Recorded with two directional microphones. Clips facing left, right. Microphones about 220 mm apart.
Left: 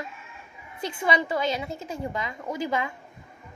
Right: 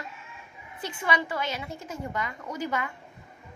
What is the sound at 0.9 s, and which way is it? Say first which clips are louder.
Speech: left 4 dB; 20° left (ahead or behind).